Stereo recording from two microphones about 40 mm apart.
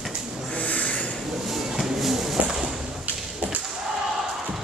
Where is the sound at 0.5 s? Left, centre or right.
Left.